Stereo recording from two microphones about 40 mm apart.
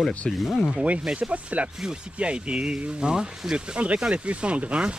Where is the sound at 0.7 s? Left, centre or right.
Right.